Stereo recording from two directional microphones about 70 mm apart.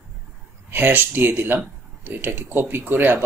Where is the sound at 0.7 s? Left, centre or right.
Right.